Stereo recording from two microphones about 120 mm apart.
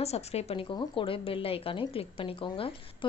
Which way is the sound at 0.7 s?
45° left (ahead or behind).